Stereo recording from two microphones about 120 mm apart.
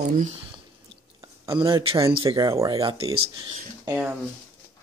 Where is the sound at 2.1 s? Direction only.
40° right (ahead or behind).